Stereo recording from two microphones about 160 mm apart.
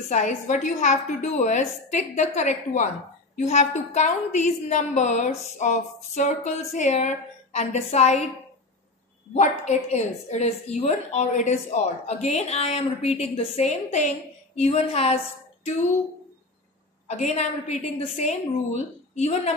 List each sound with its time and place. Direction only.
0.1 s a woman's voice: 50° left (ahead or behind)
9.3 s a woman's voice: 45° left (ahead or behind)
17.1 s a woman's voice: 45° left (ahead or behind)